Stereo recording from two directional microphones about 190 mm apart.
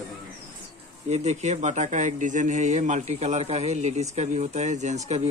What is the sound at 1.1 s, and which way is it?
Speech, 35° right (ahead or behind).